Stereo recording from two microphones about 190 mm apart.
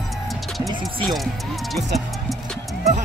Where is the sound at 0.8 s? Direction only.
Centre (ahead or behind).